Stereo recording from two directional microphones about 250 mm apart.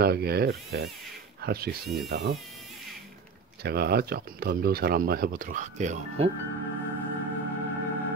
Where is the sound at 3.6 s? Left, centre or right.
Right.